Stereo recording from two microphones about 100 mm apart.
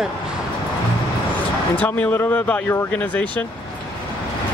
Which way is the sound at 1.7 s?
15° left (ahead or behind).